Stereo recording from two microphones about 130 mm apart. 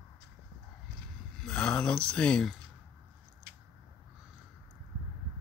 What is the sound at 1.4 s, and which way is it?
Speech, 10° left (ahead or behind).